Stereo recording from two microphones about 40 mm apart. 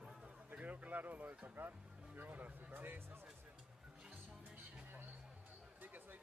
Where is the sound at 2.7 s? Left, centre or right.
Right.